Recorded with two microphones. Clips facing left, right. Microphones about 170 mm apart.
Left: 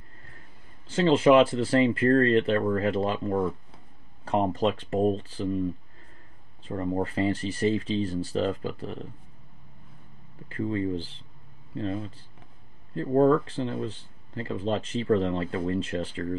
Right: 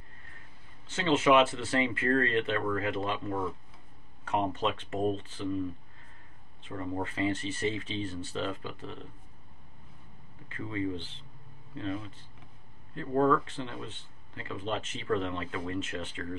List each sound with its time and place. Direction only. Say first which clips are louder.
0.8 s speech: left 6 dB; 30° left (ahead or behind)
6.6 s speech: left 6 dB; 35° left (ahead or behind)
10.5 s speech: left 6 dB; 35° left (ahead or behind)